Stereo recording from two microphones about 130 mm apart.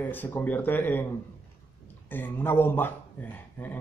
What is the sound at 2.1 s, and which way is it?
Speech, 15° left (ahead or behind).